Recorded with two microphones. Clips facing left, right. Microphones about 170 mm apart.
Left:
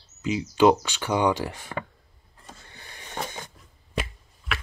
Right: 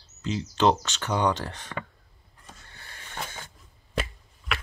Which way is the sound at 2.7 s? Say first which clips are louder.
Left 5 dB; 15° left (ahead or behind).